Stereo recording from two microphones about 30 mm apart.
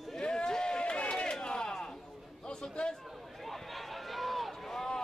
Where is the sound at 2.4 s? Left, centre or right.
Left.